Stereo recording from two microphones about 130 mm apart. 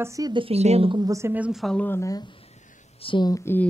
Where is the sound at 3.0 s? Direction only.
40° left (ahead or behind).